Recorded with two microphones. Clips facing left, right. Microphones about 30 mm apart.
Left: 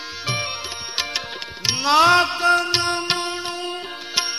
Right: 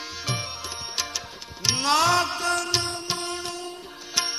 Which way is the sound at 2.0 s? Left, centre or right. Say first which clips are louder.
Left 7 dB; left.